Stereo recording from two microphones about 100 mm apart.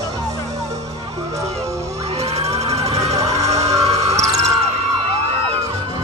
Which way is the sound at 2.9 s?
35° right (ahead or behind).